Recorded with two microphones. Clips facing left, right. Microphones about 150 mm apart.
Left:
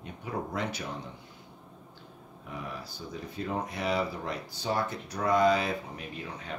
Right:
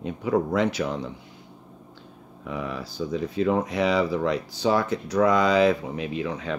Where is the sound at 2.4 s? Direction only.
90° right.